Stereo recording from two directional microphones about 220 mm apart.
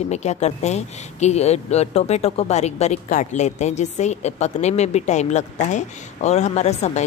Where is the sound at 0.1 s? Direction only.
30° left (ahead or behind).